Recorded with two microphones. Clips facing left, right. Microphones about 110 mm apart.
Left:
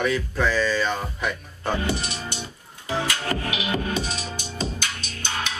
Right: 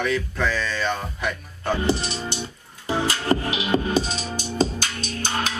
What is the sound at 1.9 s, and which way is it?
Speech, 25° right (ahead or behind).